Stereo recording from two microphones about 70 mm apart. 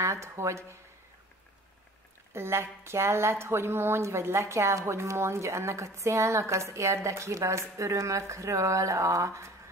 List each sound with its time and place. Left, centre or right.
0.0 s a woman's voice: right
2.3 s a woman's voice: right